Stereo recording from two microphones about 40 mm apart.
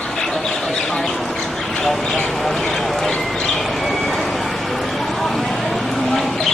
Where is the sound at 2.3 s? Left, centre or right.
Centre.